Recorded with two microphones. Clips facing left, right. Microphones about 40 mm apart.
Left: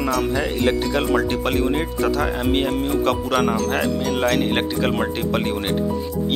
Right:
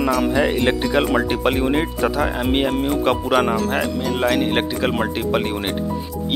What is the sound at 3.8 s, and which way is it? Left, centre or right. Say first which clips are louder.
Speech: even; centre.